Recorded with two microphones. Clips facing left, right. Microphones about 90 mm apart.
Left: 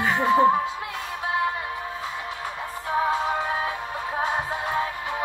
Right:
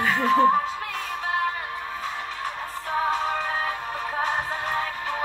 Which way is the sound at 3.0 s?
25° left (ahead or behind).